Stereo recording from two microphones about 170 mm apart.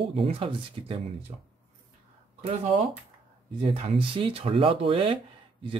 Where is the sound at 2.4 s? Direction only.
40° right (ahead or behind).